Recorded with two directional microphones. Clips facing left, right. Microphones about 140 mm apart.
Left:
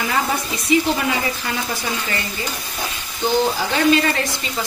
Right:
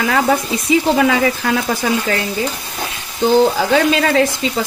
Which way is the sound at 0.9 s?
90° right.